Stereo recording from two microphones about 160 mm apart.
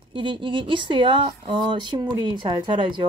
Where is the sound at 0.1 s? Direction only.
30° right (ahead or behind).